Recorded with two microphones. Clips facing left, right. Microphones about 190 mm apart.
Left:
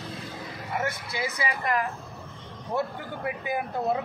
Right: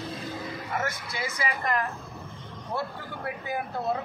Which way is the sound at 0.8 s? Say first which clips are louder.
Left 2 dB; 20° left (ahead or behind).